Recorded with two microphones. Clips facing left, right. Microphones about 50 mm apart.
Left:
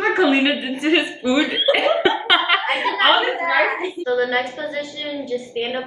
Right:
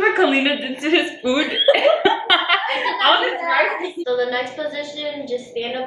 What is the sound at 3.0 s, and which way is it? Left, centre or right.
A woman's voice, left.